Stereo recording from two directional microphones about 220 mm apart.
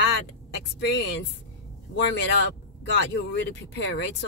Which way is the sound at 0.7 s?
55° left (ahead or behind).